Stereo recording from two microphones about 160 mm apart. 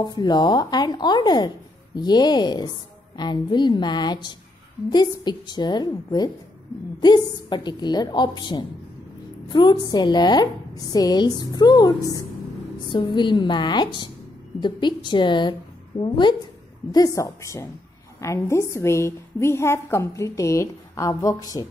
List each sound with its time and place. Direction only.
0.0 s a woman's voice: 25° left (ahead or behind)